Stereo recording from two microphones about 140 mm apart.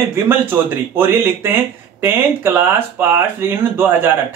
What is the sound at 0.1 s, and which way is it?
Speech, 15° right (ahead or behind).